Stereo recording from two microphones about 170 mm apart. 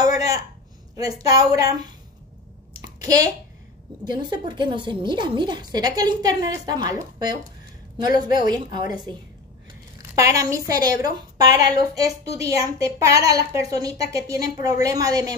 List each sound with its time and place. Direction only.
0.0 s a sound: 20° right (ahead or behind)
0.9 s a woman's voice: 20° right (ahead or behind)
4.0 s a woman's voice: 25° right (ahead or behind)
9.9 s a woman's voice: 20° right (ahead or behind)